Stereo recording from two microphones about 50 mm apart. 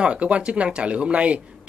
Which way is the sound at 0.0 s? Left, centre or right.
Right.